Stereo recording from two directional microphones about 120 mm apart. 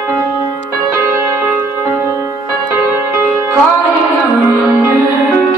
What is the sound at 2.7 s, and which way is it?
Music, 20° right (ahead or behind).